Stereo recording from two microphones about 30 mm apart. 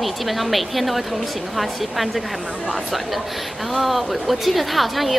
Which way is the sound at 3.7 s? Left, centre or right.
Centre.